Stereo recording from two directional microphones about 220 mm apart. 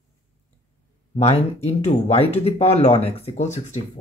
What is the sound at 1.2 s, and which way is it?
Speech, 30° left (ahead or behind).